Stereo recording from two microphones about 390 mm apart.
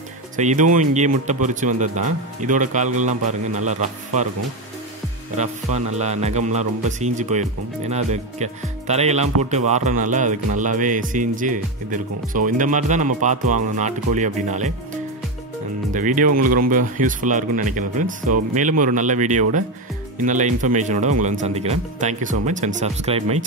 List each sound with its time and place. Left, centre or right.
0.4 s speech: centre
6.8 s speech: centre
15.9 s speech: centre
16.3 s speech: right
16.6 s speech: centre